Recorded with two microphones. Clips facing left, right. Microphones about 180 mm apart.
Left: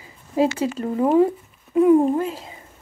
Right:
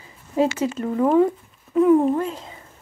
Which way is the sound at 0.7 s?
30° left (ahead or behind).